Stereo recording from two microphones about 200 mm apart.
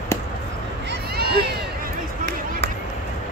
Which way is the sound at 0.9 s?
55° right (ahead or behind).